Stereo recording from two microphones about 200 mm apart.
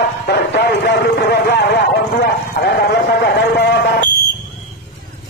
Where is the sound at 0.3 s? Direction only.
60° left (ahead or behind).